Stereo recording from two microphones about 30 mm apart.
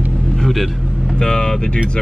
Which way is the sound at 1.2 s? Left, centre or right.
Left.